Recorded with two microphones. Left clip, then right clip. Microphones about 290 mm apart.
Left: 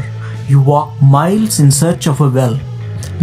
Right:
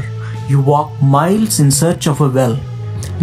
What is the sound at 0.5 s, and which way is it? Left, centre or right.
Speech, centre.